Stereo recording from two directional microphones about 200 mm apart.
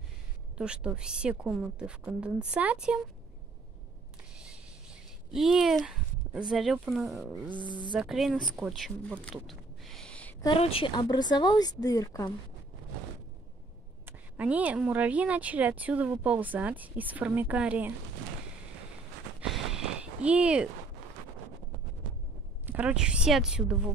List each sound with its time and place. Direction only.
0.6 s a woman's voice: 5° right (ahead or behind)
5.3 s a woman's voice: centre (ahead or behind)
10.4 s speech: 25° left (ahead or behind)
14.0 s speech: 10° right (ahead or behind)
19.4 s a sound: centre (ahead or behind)
22.7 s a woman's voice: 5° right (ahead or behind)